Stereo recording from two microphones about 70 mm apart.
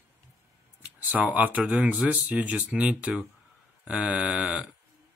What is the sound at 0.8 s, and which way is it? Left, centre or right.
Speech, right.